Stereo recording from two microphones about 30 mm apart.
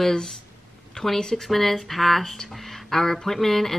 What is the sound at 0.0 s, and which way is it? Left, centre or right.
A woman's voice, left.